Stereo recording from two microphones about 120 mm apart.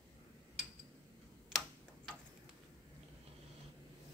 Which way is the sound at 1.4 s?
5° left (ahead or behind).